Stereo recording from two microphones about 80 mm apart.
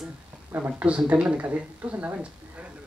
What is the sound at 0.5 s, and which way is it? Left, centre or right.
A woman's voice, centre.